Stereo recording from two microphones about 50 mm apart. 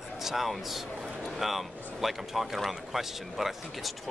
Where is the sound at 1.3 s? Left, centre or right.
Centre.